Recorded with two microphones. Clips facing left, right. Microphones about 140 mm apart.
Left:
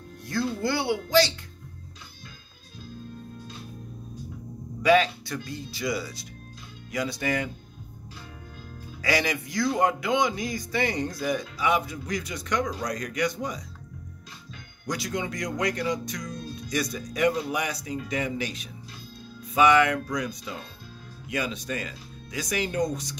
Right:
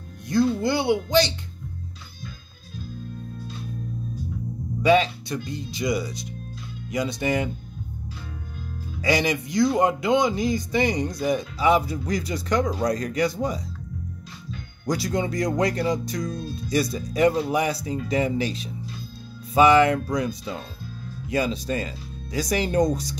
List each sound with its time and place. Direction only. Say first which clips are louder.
0.3 s speech: right 6 dB; 20° right (ahead or behind)
4.8 s speech: right 2 dB; 20° right (ahead or behind)
9.0 s speech: right 4 dB; 20° right (ahead or behind)
14.9 s speech: right 6 dB; 35° right (ahead or behind)